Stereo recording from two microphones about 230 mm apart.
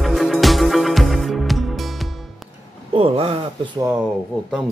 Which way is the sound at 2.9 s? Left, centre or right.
Right.